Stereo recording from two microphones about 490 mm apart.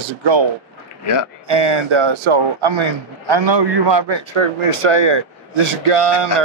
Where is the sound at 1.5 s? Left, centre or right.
Right.